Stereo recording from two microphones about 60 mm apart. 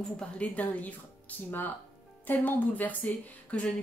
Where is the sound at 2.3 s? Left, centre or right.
Left.